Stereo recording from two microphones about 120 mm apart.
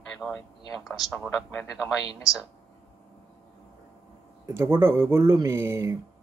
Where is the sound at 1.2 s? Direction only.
Centre (ahead or behind).